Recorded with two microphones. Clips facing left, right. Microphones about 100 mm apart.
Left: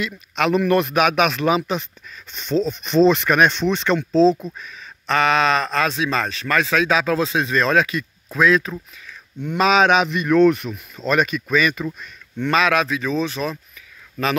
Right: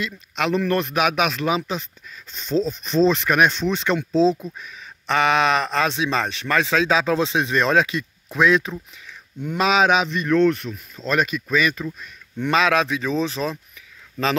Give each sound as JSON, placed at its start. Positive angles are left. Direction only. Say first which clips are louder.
{"t": 0.5, "sound": "speech", "louder": "left 4 dB", "side_deg": 10}
{"t": 9.4, "sound": "speech", "louder": "left 2 dB", "side_deg": -5}
{"t": 10.0, "sound": "speech", "louder": "left 3 dB", "side_deg": 10}
{"t": 11.1, "sound": "speech", "louder": "left 2 dB", "side_deg": 0}
{"t": 11.8, "sound": "speech", "louder": "left 3 dB", "side_deg": 25}
{"t": 12.4, "sound": "speech", "louder": "left 1 dB", "side_deg": -20}